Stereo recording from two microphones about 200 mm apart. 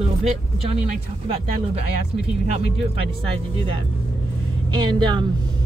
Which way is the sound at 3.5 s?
25° right (ahead or behind).